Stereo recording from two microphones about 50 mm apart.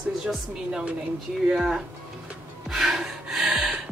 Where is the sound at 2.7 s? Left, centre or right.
Centre.